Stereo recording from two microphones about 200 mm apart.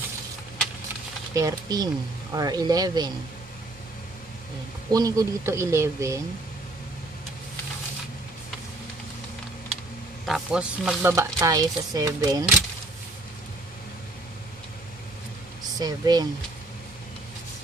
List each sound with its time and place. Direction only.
1.3 s speech: 15° right (ahead or behind)
4.9 s speech: 15° right (ahead or behind)
10.2 s speech: 5° right (ahead or behind)
15.8 s speech: 20° right (ahead or behind)